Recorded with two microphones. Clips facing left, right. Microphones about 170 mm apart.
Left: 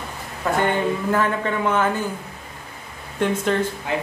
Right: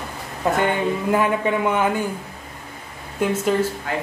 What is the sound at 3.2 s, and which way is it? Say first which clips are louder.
Speech: even; 5° right (ahead or behind).